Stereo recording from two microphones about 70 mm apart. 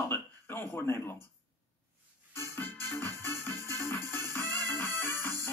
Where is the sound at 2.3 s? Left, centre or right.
Left.